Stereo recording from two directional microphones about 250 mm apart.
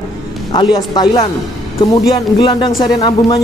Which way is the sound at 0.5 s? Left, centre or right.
Centre.